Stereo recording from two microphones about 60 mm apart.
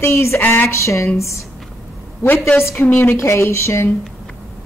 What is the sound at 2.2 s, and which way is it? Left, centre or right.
A woman's voice, left.